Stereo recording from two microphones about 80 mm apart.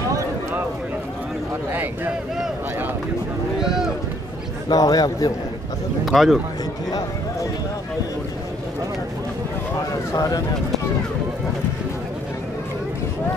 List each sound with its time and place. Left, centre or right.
1.7 s speech: right
4.6 s a man's voice: left
6.0 s speech: centre
10.1 s a man's voice: left